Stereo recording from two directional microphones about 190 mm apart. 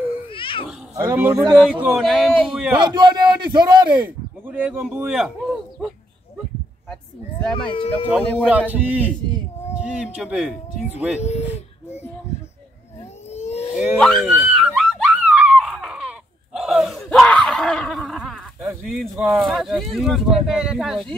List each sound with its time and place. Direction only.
0.3 s cat: 25° left (ahead or behind)
0.9 s speech: 10° right (ahead or behind)
2.8 s a man's voice: 25° right (ahead or behind)
4.5 s speech: 10° right (ahead or behind)
7.7 s speech: 25° left (ahead or behind)
8.5 s speech: 10° right (ahead or behind)
11.1 s a sound: 35° left (ahead or behind)
13.3 s a sound: 35° left (ahead or behind)
13.9 s a sound: centre (ahead or behind)
18.9 s speech: centre (ahead or behind)